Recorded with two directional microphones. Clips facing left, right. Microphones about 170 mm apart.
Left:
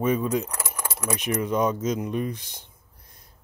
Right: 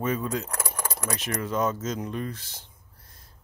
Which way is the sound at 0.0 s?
15° left (ahead or behind).